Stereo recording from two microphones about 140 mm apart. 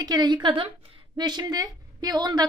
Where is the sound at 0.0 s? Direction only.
30° right (ahead or behind).